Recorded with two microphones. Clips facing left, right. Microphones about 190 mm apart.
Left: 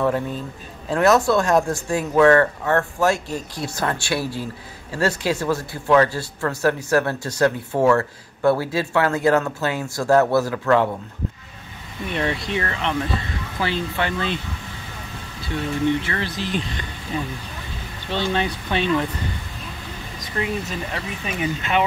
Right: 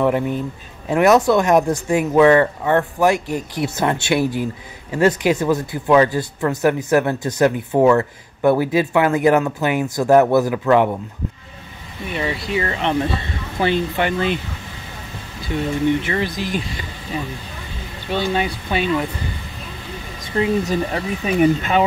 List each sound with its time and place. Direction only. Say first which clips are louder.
0.0 s speech: right 4 dB; 15° right (ahead or behind)
12.1 s speech: right 1 dB; 5° right (ahead or behind)
12.6 s speech: right 4 dB; 20° right (ahead or behind)
16.0 s speech: right 4 dB; 15° right (ahead or behind)
18.1 s speech: right 2 dB; 10° right (ahead or behind)
20.3 s speech: right 8 dB; 30° right (ahead or behind)
21.4 s speech: right 6 dB; 45° right (ahead or behind)